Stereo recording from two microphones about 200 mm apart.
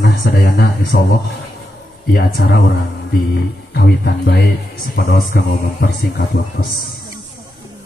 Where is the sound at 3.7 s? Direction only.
50° left (ahead or behind).